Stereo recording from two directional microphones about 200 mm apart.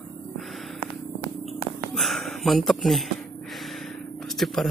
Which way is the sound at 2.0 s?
Centre (ahead or behind).